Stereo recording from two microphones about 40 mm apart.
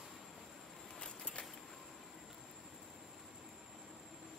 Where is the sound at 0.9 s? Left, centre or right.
Left.